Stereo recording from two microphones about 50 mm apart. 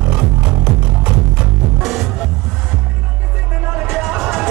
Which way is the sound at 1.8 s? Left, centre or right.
Centre.